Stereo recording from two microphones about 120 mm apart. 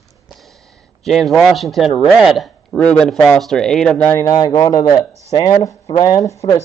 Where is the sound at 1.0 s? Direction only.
Centre (ahead or behind).